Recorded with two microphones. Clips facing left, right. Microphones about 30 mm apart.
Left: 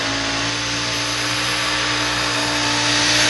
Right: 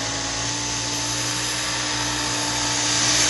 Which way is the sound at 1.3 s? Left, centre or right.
Left.